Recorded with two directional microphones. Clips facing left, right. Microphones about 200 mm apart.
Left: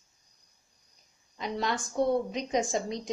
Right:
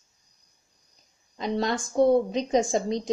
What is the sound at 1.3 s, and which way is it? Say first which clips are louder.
A woman's voice: right 5 dB; 35° right (ahead or behind).